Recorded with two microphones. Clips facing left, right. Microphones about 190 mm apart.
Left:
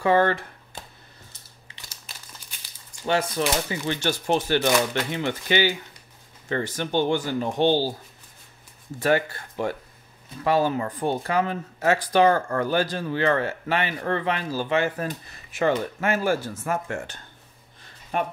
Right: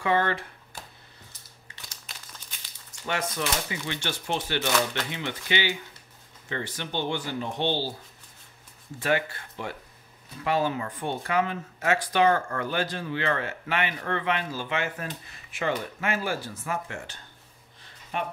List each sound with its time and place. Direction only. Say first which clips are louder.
0.0 s speech: left 5 dB; 40° left (ahead or behind)
0.7 s a sound: left 2 dB; 20° left (ahead or behind)
3.1 s speech: left 6 dB; 35° left (ahead or behind)
9.0 s speech: left 4 dB; 40° left (ahead or behind)